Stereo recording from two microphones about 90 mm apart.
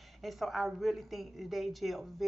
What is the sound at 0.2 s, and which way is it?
Speech, centre (ahead or behind).